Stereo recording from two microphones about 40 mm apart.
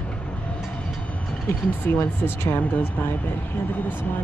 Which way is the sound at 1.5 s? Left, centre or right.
Left.